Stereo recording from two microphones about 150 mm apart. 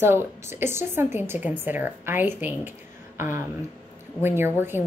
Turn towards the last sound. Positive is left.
turn(degrees=-15)  # may be behind; listen again after turning